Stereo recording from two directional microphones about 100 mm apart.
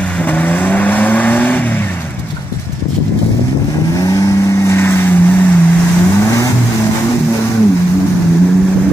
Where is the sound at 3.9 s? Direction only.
35° left (ahead or behind).